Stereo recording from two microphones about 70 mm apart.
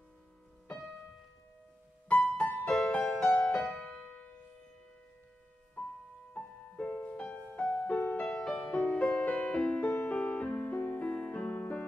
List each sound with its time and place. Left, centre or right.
2.0 s music: centre
3.8 s music: left
6.3 s music: left